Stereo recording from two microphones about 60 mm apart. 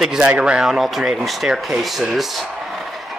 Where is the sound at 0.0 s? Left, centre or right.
Centre.